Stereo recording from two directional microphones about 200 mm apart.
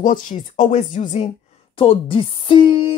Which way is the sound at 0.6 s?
35° left (ahead or behind).